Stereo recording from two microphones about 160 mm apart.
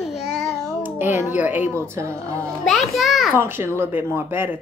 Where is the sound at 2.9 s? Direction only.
Centre (ahead or behind).